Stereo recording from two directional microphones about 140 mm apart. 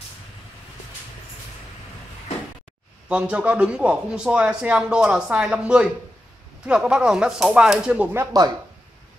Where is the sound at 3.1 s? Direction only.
10° right (ahead or behind).